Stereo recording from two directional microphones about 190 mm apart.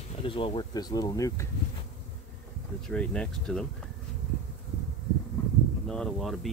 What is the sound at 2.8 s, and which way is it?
Speech, 5° left (ahead or behind).